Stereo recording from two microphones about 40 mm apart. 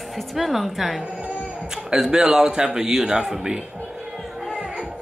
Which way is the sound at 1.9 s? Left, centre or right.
Centre.